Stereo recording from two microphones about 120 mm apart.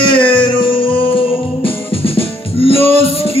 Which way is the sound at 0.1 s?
40° left (ahead or behind).